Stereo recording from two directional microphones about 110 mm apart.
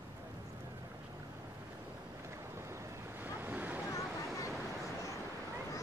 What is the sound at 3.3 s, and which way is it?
Waves, 15° right (ahead or behind).